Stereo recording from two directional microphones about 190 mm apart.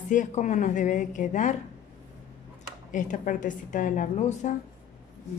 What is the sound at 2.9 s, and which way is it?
A woman's voice, 40° left (ahead or behind).